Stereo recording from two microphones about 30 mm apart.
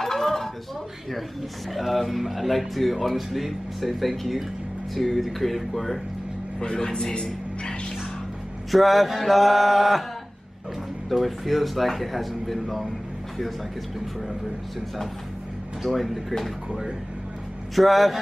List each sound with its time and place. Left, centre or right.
0.0 s dishes: centre
1.7 s speech: centre
6.6 s a man's voice: left
8.7 s speech: centre
11.1 s speech: centre
15.8 s speech: centre
17.7 s speech: centre